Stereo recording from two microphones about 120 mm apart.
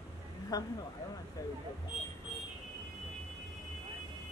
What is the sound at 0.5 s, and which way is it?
Speech, 30° left (ahead or behind).